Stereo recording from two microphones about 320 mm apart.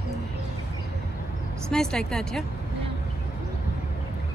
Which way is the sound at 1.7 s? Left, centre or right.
Centre.